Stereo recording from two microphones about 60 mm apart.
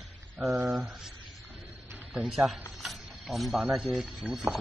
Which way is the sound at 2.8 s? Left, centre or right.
Centre.